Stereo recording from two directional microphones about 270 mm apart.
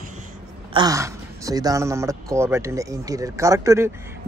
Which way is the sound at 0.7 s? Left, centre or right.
Centre.